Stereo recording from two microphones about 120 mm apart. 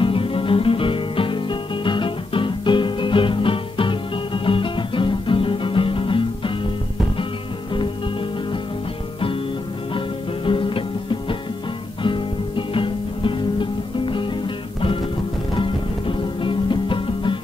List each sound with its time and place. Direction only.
0.0 s music: 50° left (ahead or behind)
9.9 s music: 45° left (ahead or behind)